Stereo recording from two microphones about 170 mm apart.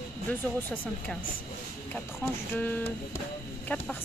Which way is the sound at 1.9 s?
10° left (ahead or behind).